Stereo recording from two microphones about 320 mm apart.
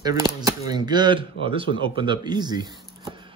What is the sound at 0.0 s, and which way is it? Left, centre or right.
Speech, centre.